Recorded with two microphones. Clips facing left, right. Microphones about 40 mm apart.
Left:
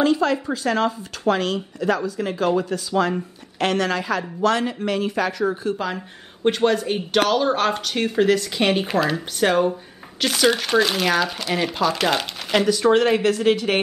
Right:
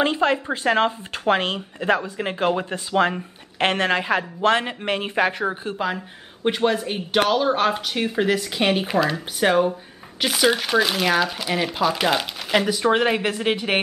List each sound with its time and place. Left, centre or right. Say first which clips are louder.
0.0 s speech: left 1 dB; right
5.9 s speech: even; centre